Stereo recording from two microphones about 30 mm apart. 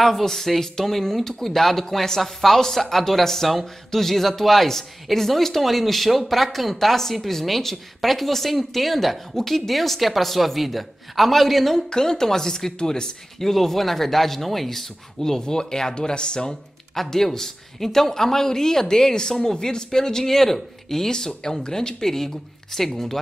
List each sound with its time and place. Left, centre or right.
0.0 s speech: centre
11.9 s speech: left
13.4 s speech: centre; by 16.4 s left
16.4 s speech: centre
21.6 s speech: left; by 23.1 s centre